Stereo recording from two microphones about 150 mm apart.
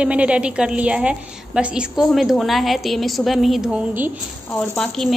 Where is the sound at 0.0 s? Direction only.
10° right (ahead or behind).